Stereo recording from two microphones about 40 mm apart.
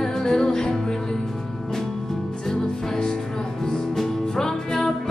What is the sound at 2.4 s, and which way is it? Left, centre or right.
Music, centre.